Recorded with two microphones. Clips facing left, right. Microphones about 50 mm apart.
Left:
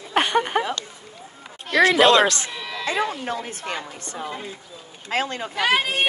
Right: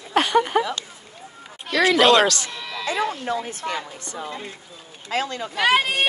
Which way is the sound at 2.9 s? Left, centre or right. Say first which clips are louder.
Right 1 dB; left.